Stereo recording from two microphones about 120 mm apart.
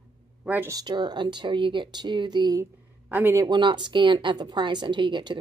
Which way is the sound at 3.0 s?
15° right (ahead or behind).